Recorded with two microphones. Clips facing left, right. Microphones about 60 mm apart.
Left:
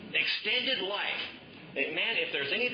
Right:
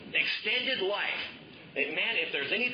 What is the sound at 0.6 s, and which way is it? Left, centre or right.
Speech, centre.